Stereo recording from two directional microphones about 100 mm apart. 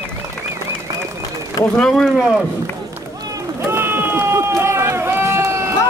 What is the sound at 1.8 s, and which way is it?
Speech, 5° left (ahead or behind).